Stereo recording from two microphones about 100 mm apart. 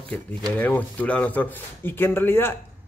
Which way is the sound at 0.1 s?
15° left (ahead or behind).